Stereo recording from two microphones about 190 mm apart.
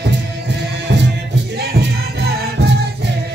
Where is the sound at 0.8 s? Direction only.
65° right (ahead or behind).